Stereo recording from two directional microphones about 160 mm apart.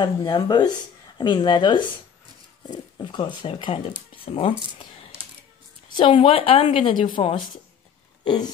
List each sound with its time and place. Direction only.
0.0 s speech: 25° left (ahead or behind)
3.0 s a woman's voice: 30° left (ahead or behind)
5.9 s a woman's voice: 30° left (ahead or behind)
8.2 s a sound: 30° left (ahead or behind)